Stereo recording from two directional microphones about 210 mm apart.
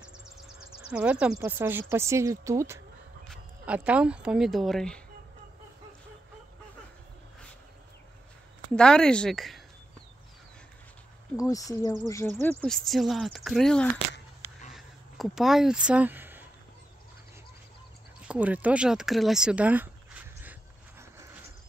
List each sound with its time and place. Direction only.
0.8 s speech: 5° right (ahead or behind)
8.7 s speech: 5° left (ahead or behind)
11.4 s speech: 15° left (ahead or behind)
14.7 s a sound: centre (ahead or behind)
18.3 s speech: 5° right (ahead or behind)